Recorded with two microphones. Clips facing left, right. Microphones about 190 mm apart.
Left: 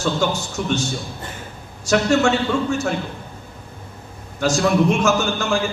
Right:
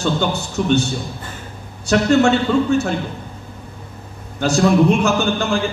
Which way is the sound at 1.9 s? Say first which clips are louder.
Right 3 dB; 35° right (ahead or behind).